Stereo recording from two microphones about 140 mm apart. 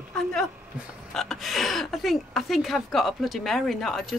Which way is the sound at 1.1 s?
Centre (ahead or behind).